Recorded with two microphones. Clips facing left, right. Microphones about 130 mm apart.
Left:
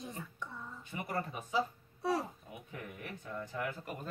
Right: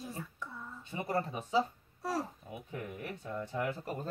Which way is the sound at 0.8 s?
25° right (ahead or behind).